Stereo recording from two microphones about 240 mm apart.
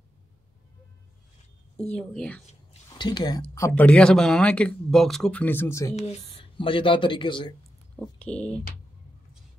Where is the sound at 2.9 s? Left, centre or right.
Centre.